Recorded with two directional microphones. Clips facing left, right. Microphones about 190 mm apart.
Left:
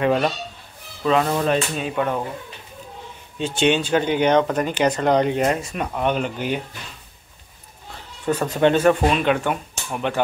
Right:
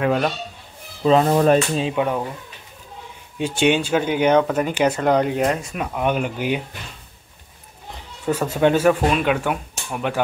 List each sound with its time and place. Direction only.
0.0 s speech: centre (ahead or behind)
1.0 s speech: 35° right (ahead or behind)
2.0 s speech: 10° right (ahead or behind)
3.3 s speech: 10° right (ahead or behind)
7.9 s speech: 10° right (ahead or behind)